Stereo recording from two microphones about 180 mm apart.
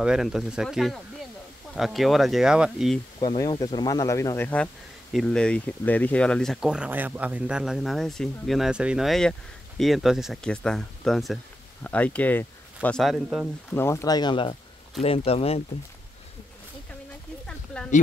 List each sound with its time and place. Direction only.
0.0 s speech: 5° right (ahead or behind)
3.2 s speech: 20° left (ahead or behind); by 13.5 s centre (ahead or behind)
13.7 s speech: 15° left (ahead or behind); by 15.6 s 35° left (ahead or behind)
17.5 s a sound: 5° left (ahead or behind)